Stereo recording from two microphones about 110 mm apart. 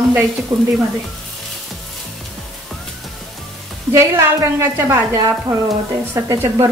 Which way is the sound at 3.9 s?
25° right (ahead or behind).